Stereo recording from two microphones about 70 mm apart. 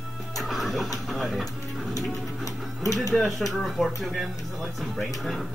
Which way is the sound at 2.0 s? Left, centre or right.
Left.